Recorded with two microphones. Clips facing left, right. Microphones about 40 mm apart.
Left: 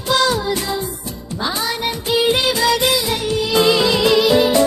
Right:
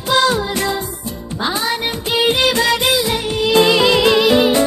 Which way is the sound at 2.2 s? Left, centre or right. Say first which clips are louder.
Right 3 dB; right.